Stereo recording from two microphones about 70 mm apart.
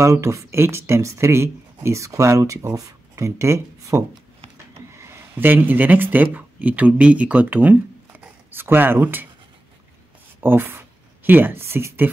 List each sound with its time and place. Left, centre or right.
0.0 s speech: right
10.4 s speech: right